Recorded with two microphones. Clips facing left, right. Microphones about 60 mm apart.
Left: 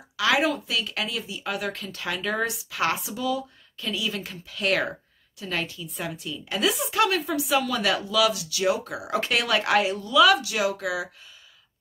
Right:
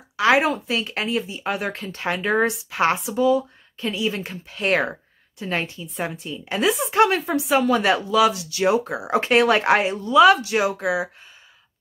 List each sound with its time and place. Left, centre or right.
0.2 s a woman's voice: right